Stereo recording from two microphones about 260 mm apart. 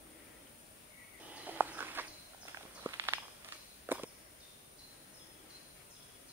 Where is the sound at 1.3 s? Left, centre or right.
Centre.